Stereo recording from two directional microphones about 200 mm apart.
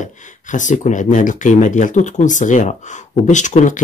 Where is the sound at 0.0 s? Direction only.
40° left (ahead or behind).